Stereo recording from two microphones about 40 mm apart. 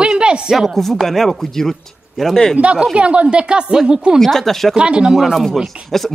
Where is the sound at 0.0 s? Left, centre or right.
Right.